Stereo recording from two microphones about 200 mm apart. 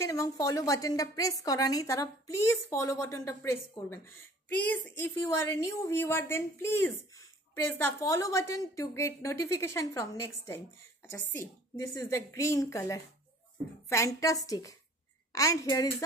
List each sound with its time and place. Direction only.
0.0 s a woman's voice: 15° left (ahead or behind)